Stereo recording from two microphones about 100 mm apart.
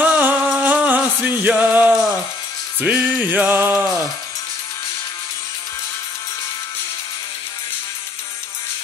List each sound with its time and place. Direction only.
0.0 s music: 15° right (ahead or behind)